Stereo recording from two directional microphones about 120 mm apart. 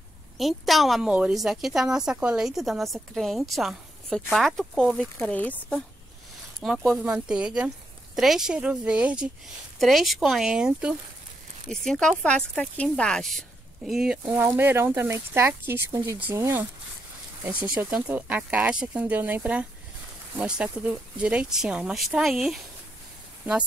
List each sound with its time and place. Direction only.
0.4 s a woman's voice: centre (ahead or behind)
6.6 s a woman's voice: centre (ahead or behind)
11.7 s a woman's voice: 5° left (ahead or behind)
14.2 s speech: 15° right (ahead or behind)
17.9 s speech: 15° right (ahead or behind)